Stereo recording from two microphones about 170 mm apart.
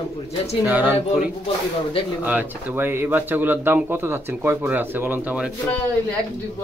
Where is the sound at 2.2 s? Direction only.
10° right (ahead or behind).